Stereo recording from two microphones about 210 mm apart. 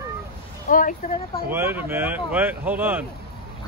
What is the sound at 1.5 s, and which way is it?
Speech, 10° right (ahead or behind).